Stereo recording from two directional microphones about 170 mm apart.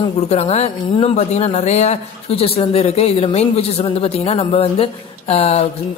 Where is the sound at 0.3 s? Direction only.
40° left (ahead or behind).